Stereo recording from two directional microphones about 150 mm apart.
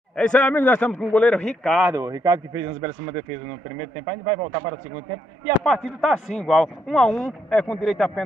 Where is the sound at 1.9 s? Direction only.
25° right (ahead or behind).